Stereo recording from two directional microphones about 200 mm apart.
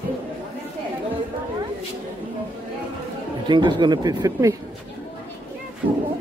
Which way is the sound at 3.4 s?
25° right (ahead or behind).